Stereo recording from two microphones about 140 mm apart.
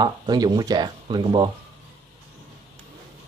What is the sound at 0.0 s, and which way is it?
Speech, 30° right (ahead or behind).